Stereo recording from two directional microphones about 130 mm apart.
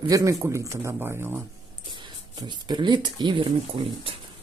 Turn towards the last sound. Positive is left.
turn(degrees=-45)  # may be behind; listen again after turning